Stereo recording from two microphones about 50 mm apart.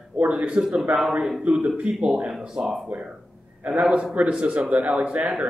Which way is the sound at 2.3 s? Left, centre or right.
Centre.